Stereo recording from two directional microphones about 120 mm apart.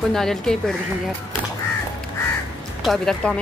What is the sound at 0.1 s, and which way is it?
Speech, 5° left (ahead or behind).